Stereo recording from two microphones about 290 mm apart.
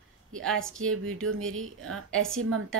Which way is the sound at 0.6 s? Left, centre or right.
Right.